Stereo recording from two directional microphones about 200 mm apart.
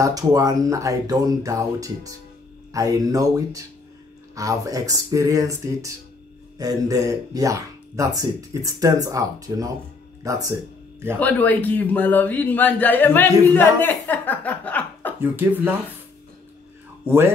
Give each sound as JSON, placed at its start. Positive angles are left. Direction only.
{"t": 0.0, "sound": "speech", "side_deg": -20}
{"t": 11.1, "sound": "speech", "side_deg": 10}
{"t": 15.3, "sound": "speech", "side_deg": -10}